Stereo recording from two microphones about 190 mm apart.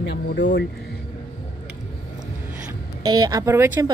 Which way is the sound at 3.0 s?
20° right (ahead or behind).